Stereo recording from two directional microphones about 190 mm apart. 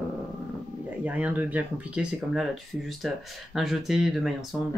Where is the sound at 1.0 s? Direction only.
10° right (ahead or behind).